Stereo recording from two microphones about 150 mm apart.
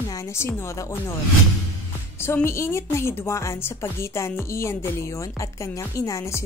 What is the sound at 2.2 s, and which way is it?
A woman's voice, 15° left (ahead or behind).